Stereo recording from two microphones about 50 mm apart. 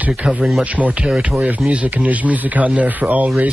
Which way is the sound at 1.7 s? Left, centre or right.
Right.